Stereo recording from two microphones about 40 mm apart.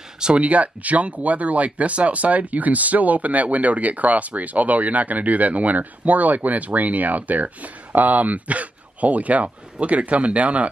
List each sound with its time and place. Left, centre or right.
0.4 s speech: right